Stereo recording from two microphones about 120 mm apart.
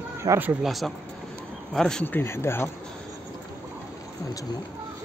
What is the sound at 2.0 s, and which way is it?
Speech, 20° left (ahead or behind).